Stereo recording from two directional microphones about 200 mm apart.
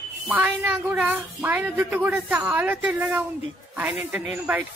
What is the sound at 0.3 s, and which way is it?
Speech, 10° right (ahead or behind).